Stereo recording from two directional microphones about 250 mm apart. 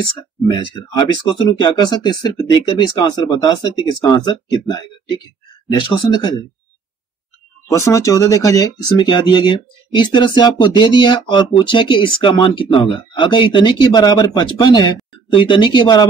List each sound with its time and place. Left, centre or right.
0.5 s speech: centre
7.6 s speech: centre